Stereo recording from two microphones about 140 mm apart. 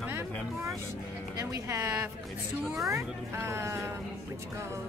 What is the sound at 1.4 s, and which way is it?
Speech, 20° right (ahead or behind).